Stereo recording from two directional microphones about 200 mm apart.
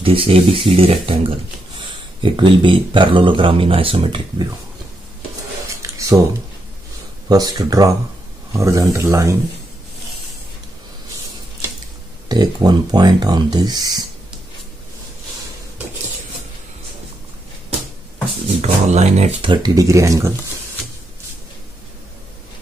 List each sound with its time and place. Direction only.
0.0 s speech: 25° right (ahead or behind)
2.2 s speech: 25° right (ahead or behind)
5.7 s a sound: 15° right (ahead or behind)
7.2 s speech: 20° right (ahead or behind)
12.3 s speech: 20° right (ahead or behind)
18.6 s speech: 35° right (ahead or behind); by 20.3 s 15° right (ahead or behind)